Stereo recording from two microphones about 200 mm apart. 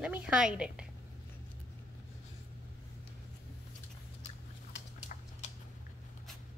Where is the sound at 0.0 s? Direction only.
5° right (ahead or behind).